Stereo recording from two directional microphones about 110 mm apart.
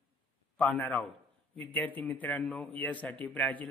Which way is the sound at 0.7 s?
15° left (ahead or behind).